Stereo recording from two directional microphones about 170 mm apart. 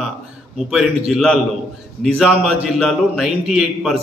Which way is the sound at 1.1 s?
Centre (ahead or behind).